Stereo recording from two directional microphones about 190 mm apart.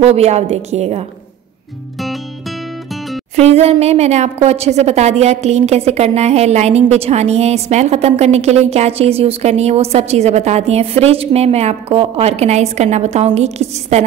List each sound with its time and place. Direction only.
0.0 s a woman's voice: 30° right (ahead or behind)
3.3 s a woman's voice: 35° right (ahead or behind)